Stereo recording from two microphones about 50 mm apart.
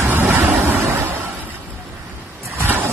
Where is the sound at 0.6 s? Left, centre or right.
Right.